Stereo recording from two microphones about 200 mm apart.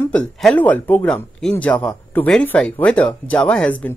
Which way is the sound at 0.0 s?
5° left (ahead or behind).